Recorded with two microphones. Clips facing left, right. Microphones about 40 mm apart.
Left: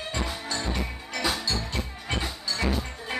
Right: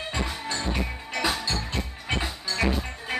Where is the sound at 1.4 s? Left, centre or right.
Right.